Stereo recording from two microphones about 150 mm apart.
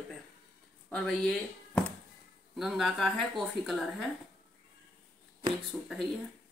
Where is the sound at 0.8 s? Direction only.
5° left (ahead or behind).